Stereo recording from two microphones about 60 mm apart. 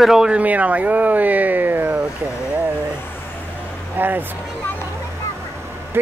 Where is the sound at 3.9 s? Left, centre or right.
Right.